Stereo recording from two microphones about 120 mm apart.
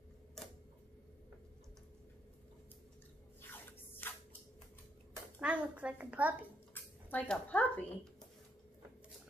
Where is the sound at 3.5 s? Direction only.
15° left (ahead or behind).